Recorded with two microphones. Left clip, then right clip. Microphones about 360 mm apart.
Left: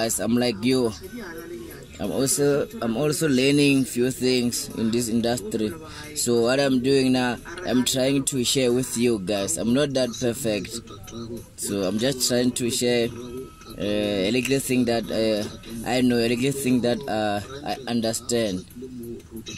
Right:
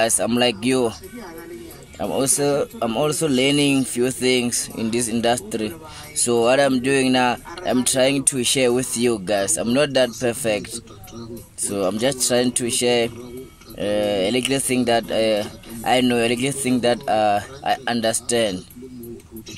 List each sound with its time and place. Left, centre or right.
0.0 s speech: right
2.2 s speech: right
11.6 s speech: right